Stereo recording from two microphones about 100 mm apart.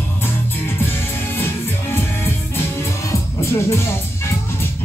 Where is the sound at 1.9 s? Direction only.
25° left (ahead or behind).